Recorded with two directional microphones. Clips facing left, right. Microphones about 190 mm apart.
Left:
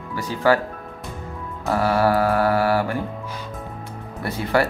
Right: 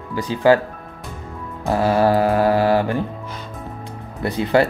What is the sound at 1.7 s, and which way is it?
Speech, 20° right (ahead or behind).